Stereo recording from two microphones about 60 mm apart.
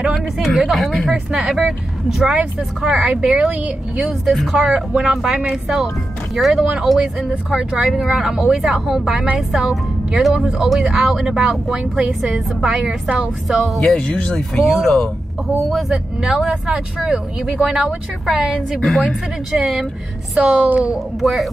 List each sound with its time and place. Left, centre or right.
0.5 s a woman's voice: centre; by 4.1 s right
4.3 s speech: centre
6.6 s speech: centre
6.9 s speech: centre
13.9 s speech: centre
14.5 s speech: centre
19.5 s speech: centre